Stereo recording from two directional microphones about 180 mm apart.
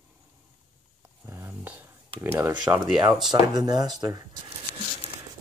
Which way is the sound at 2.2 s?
10° right (ahead or behind).